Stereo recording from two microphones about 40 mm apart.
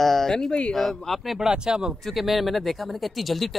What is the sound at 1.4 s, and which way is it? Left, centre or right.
Speech, centre.